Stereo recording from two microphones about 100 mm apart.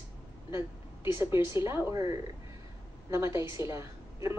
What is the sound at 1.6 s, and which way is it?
A woman's voice, 30° right (ahead or behind).